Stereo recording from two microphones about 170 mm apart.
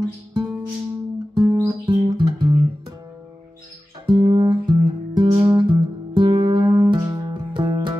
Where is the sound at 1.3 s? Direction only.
30° right (ahead or behind).